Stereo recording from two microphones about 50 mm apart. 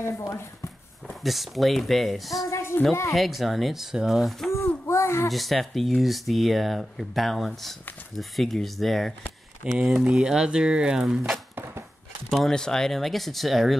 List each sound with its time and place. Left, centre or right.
0.0 s speech: left
1.2 s speech: centre
2.5 s a sound: left
3.1 s speech: centre
4.8 s a sound: left
5.3 s speech: centre
9.8 s speech: centre
12.4 s speech: centre